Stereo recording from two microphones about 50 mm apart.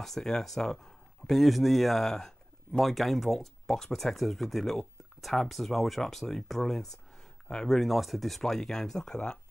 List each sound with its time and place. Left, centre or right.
0.0 s speech: centre
1.4 s speech: centre
2.8 s speech: centre
7.7 s speech: centre